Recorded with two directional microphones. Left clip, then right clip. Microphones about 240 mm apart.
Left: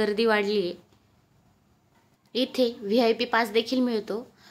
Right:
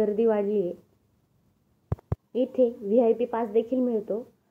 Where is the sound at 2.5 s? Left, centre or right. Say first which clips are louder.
Right 3 dB; centre.